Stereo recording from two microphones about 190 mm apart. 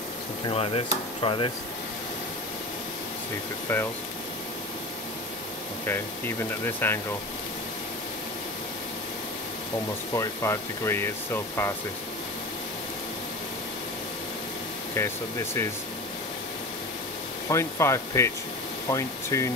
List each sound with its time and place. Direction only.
0.5 s a sound: 30° left (ahead or behind)
3.7 s speech: 10° left (ahead or behind)
5.9 s speech: 10° left (ahead or behind)
10.1 s speech: 15° left (ahead or behind)
15.0 s speech: 15° left (ahead or behind)
17.5 s speech: 15° left (ahead or behind)